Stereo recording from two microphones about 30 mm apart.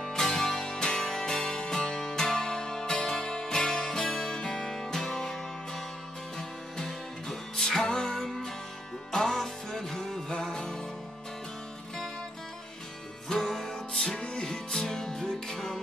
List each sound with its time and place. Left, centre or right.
0.1 s music: left
13.3 s music: centre